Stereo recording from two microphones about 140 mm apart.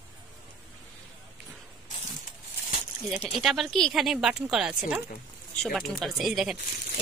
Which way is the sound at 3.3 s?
Centre (ahead or behind).